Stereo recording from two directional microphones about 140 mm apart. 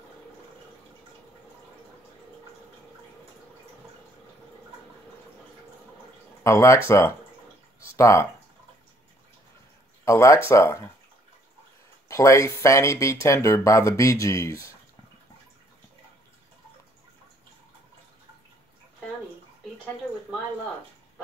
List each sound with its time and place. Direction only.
6.4 s speech: 20° left (ahead or behind)
7.8 s a sound: 20° left (ahead or behind)
10.0 s speech: 20° left (ahead or behind)
12.1 s speech: 20° left (ahead or behind)